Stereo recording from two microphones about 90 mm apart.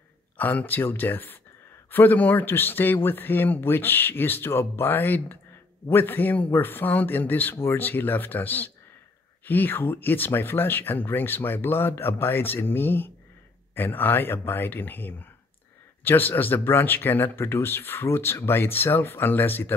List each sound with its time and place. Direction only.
0.4 s speech: 20° left (ahead or behind)